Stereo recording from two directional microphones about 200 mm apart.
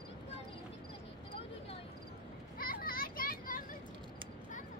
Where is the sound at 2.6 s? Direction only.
45° left (ahead or behind).